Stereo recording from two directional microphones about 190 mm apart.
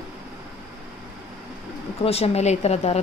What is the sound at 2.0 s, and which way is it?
Speech, 30° left (ahead or behind).